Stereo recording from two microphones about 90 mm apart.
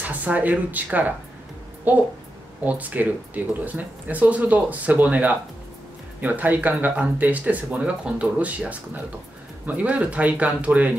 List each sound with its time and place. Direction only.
0.0 s a woman's voice: 15° right (ahead or behind)